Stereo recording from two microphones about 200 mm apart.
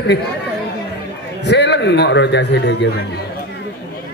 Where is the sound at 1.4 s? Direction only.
60° left (ahead or behind).